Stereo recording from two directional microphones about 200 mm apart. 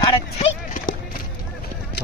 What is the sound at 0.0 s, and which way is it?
Clip-clop, 25° left (ahead or behind).